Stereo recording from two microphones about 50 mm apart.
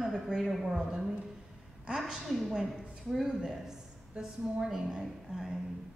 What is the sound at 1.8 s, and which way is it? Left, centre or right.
A woman's voice, centre.